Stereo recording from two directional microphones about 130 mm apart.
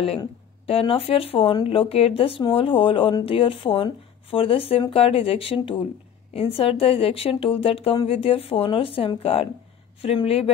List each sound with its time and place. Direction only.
0.7 s speech: 45° left (ahead or behind)